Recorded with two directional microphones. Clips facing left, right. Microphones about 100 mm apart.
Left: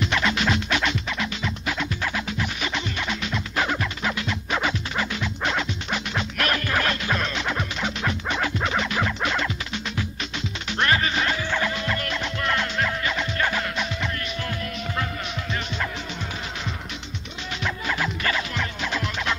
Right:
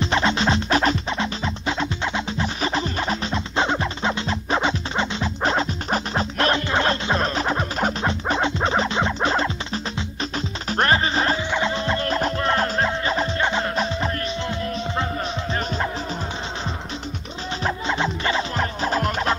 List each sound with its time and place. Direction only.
0.0 s music: 30° right (ahead or behind)
10.7 s music: 35° right (ahead or behind)
17.6 s music: 30° right (ahead or behind)